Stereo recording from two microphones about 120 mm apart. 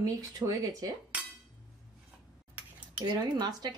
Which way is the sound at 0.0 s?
30° right (ahead or behind).